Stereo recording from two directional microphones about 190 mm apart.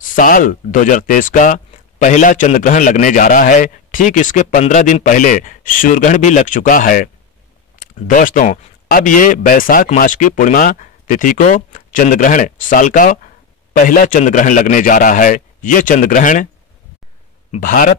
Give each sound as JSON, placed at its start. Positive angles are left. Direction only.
{"t": 0.0, "sound": "speech", "side_deg": 45}
{"t": 8.1, "sound": "speech", "side_deg": 45}
{"t": 17.5, "sound": "speech", "side_deg": 45}